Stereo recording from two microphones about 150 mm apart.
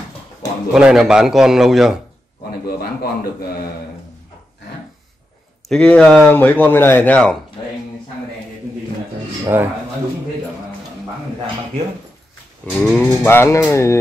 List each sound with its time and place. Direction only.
0.7 s a man's voice: 5° right (ahead or behind)
2.6 s a man's voice: 90° left
5.7 s speech: 5° left (ahead or behind)
9.5 s speech: 10° right (ahead or behind)
12.8 s speech: 10° left (ahead or behind)